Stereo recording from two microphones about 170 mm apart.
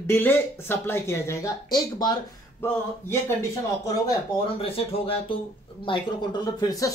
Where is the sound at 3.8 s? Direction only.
20° left (ahead or behind).